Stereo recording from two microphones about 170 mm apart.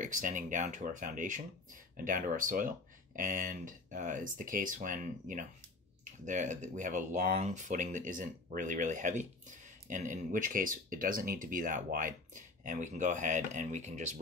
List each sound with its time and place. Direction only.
0.0 s speech: 50° right (ahead or behind)